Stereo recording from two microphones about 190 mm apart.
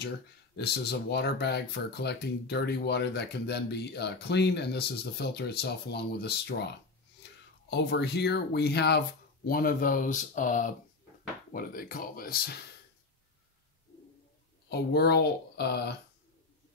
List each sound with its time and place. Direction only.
0.6 s speech: 60° left (ahead or behind)
7.7 s speech: 60° left (ahead or behind)
14.7 s speech: 60° left (ahead or behind)